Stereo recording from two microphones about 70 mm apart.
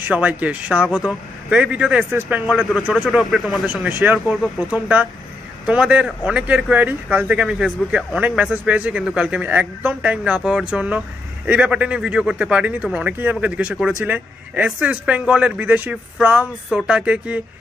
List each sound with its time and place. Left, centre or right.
0.0 s a man's voice: right
2.7 s speech: centre
4.0 s a man's voice: centre